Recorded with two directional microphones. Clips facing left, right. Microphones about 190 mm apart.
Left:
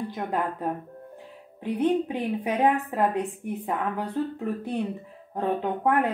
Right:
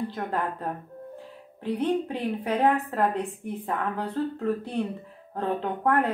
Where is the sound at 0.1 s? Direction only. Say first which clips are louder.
Left 1 dB; 15° left (ahead or behind).